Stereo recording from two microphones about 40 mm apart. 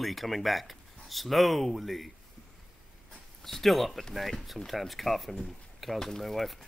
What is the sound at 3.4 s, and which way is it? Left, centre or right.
Speech, centre.